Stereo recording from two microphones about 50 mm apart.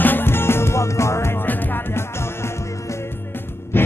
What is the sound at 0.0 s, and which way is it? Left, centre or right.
Music, left.